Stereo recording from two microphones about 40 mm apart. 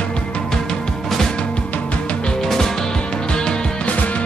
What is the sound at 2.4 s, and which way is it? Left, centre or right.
Music, centre.